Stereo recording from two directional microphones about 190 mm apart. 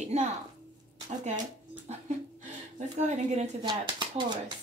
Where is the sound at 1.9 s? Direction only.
35° right (ahead or behind).